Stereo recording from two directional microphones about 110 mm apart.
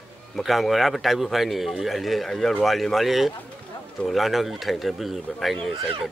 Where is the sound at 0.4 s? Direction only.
Centre (ahead or behind).